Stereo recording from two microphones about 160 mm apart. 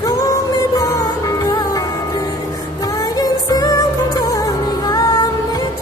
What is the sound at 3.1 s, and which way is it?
Music, 20° left (ahead or behind).